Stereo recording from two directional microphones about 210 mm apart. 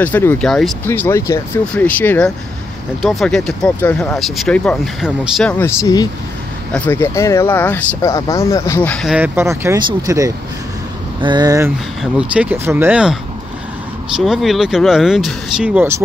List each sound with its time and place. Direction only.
0.0 s speech: 10° left (ahead or behind); by 11.7 s 15° right (ahead or behind)
12.0 s speech: 5° right (ahead or behind)